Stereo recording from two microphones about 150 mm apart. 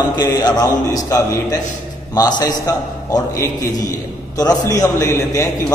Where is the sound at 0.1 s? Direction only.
25° left (ahead or behind).